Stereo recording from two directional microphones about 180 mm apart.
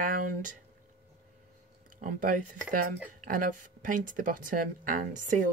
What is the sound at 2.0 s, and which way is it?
Speech, 50° right (ahead or behind).